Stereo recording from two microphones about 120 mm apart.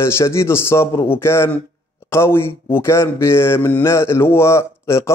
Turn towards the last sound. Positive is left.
turn(degrees=20)  # may be behind; listen again after turning